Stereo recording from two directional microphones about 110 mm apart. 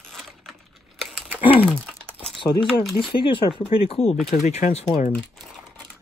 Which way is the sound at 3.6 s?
65° left (ahead or behind).